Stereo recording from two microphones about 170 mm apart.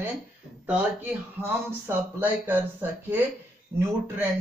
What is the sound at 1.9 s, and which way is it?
Speech, 10° right (ahead or behind).